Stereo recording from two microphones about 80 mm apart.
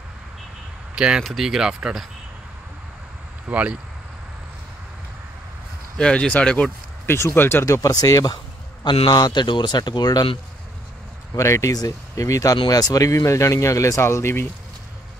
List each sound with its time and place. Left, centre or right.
0.9 s speech: centre
3.4 s speech: centre
5.9 s speech: centre
7.1 s speech: left
7.6 s speech: left
8.8 s speech: left
11.3 s speech: left